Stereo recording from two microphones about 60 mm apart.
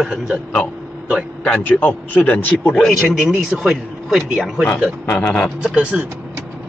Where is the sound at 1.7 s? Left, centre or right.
Left.